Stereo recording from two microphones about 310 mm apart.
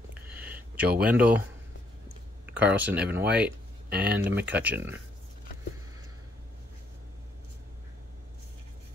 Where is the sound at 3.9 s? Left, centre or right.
Right.